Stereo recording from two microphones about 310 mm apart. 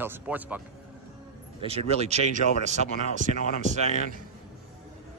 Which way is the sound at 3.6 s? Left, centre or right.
Right.